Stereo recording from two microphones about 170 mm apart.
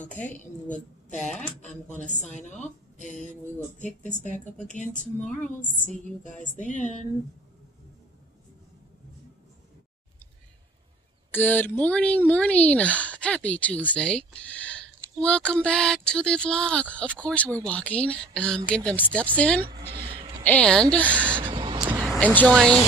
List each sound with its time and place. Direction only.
0.2 s a woman's voice: 10° left (ahead or behind)
0.7 s a woman's voice: 45° left (ahead or behind)
3.2 s a woman's voice: 5° left (ahead or behind)
4.6 s a woman's voice: 45° left (ahead or behind)
6.4 s a woman's voice: 50° left (ahead or behind)
11.3 s a woman's voice: 10° left (ahead or behind)
21.4 s gasp: 30° right (ahead or behind)
22.0 s vehicle: centre (ahead or behind)
22.3 s speech: 5° left (ahead or behind)